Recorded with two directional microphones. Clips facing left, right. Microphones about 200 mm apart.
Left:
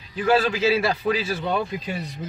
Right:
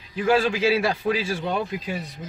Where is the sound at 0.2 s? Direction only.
10° right (ahead or behind).